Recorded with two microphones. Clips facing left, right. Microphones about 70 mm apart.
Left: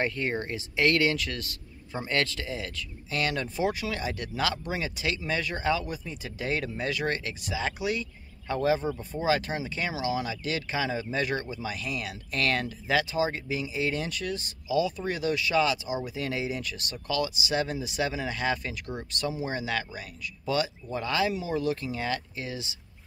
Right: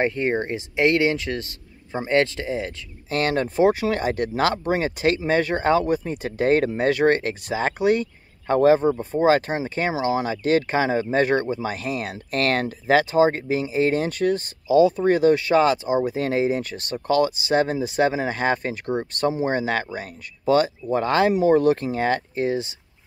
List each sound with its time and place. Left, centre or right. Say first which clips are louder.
0.0 s a man's voice: right 7 dB; right
3.1 s speech: right 8 dB; right